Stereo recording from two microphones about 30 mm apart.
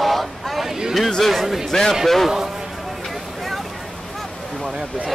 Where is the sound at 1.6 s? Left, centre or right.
Centre.